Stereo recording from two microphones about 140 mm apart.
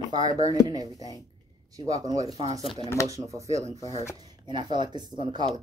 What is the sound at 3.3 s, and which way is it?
Speech, 25° right (ahead or behind).